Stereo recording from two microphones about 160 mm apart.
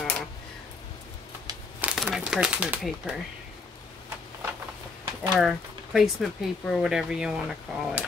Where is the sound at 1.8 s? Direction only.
5° right (ahead or behind).